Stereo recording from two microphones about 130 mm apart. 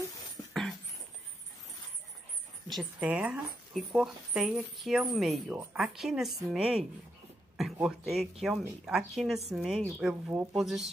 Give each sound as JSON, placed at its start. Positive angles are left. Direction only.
{"t": 0.5, "sound": "dog", "side_deg": 0}
{"t": 2.7, "sound": "speech", "side_deg": -5}
{"t": 5.5, "sound": "a woman's voice", "side_deg": -10}
{"t": 5.8, "sound": "speech", "side_deg": 0}
{"t": 7.8, "sound": "speech", "side_deg": 0}